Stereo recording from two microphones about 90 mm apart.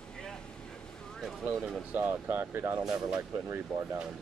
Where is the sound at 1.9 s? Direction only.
20° right (ahead or behind).